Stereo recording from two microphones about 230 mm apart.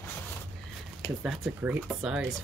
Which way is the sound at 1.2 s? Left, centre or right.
Centre.